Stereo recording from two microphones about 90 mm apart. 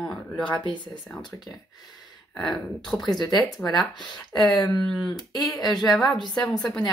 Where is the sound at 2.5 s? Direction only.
5° left (ahead or behind).